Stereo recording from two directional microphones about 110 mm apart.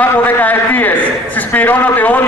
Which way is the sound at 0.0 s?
15° left (ahead or behind).